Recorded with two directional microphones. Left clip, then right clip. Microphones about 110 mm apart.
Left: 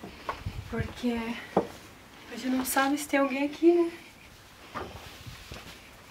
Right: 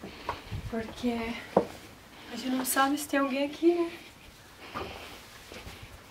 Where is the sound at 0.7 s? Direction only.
5° left (ahead or behind).